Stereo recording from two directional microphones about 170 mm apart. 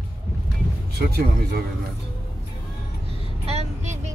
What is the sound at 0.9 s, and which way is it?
Speech, 65° right (ahead or behind).